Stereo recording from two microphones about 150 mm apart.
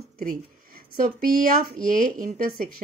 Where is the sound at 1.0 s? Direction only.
70° right (ahead or behind).